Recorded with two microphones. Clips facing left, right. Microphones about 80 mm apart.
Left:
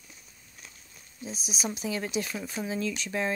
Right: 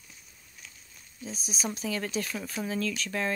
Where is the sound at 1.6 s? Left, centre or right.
Centre.